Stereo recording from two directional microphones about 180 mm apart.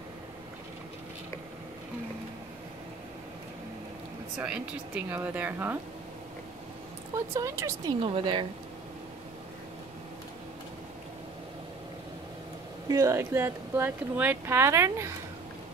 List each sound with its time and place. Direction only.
4.4 s speech: 10° right (ahead or behind)
7.3 s speech: 15° right (ahead or behind)
8.0 s speech: 30° right (ahead or behind)
12.9 s speech: 15° right (ahead or behind)